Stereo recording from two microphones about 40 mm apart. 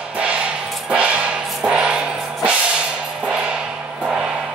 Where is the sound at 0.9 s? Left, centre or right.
Right.